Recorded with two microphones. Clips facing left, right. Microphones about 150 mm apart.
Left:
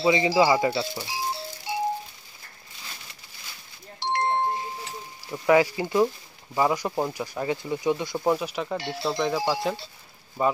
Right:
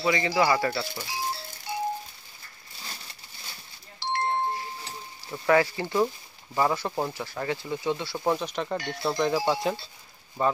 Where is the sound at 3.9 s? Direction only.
20° left (ahead or behind).